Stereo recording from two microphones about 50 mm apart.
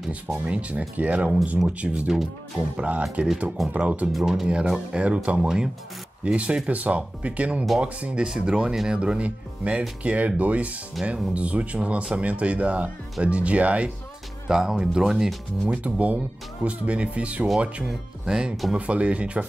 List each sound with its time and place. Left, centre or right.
0.1 s speech: right
2.0 s speech: centre
2.8 s speech: right
4.1 s speech: centre
4.7 s speech: right
14.5 s speech: centre
15.7 s speech: right
18.2 s speech: centre